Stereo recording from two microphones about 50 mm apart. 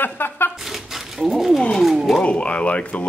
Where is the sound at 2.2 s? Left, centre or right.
Left.